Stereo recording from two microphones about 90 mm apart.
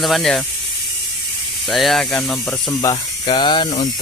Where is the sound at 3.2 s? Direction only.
60° left (ahead or behind).